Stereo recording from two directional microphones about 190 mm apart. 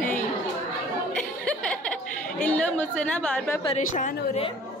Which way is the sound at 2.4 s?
10° left (ahead or behind).